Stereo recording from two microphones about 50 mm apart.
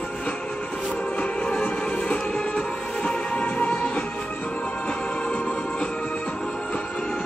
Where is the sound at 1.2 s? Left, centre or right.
Left.